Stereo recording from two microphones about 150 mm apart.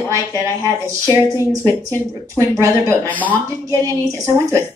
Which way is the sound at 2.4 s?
20° right (ahead or behind).